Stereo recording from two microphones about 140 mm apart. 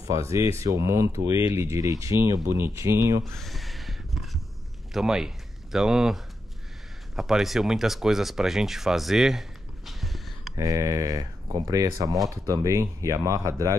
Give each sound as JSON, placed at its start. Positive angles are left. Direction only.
{"t": 0.1, "sound": "speech", "side_deg": -20}
{"t": 3.3, "sound": "a sound", "side_deg": 0}
{"t": 4.9, "sound": "speech", "side_deg": -5}
{"t": 10.5, "sound": "speech", "side_deg": -25}